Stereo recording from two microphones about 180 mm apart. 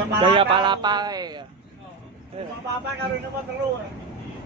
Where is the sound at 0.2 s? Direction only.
30° right (ahead or behind).